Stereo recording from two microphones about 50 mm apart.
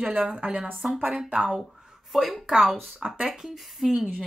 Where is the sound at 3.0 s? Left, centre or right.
Right.